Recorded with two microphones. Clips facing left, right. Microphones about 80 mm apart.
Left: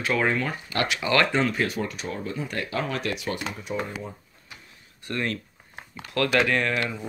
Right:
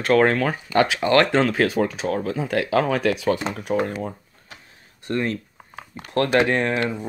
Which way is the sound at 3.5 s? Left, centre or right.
Right.